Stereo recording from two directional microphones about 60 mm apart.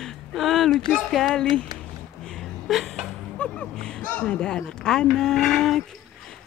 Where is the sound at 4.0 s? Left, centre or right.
Left.